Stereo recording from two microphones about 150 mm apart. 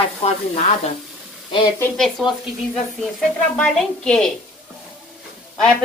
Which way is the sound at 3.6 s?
5° left (ahead or behind).